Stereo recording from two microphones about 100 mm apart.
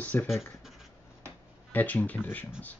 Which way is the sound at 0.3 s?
Centre (ahead or behind).